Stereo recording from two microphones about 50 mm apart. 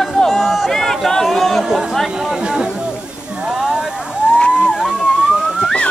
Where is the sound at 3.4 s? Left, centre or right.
Centre.